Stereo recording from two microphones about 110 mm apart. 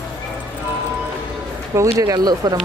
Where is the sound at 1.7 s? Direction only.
30° right (ahead or behind).